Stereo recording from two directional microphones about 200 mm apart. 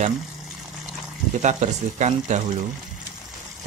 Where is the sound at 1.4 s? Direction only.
35° right (ahead or behind).